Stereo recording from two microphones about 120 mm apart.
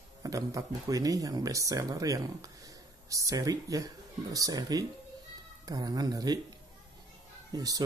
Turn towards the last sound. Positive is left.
turn(degrees=-30)  # may be behind; listen again after turning